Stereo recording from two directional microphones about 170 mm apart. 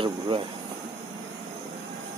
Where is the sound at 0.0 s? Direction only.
30° right (ahead or behind).